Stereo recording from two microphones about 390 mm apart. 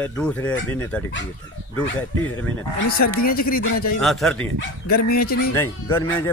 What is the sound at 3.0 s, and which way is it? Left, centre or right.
Speech, left.